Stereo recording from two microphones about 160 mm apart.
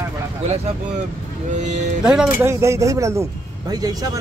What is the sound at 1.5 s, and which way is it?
Speech, 50° right (ahead or behind).